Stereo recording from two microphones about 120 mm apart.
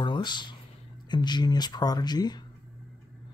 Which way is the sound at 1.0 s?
40° left (ahead or behind).